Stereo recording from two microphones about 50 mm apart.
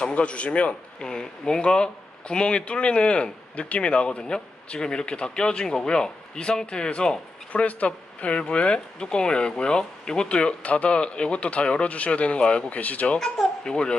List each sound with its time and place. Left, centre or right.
0.0 s speech: left
1.0 s speech: centre
13.2 s speech: centre